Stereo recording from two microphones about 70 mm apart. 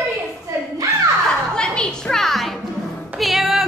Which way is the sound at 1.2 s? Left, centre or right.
Centre.